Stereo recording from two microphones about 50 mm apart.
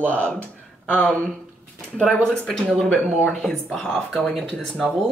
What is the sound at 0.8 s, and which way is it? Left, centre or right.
Speech, left.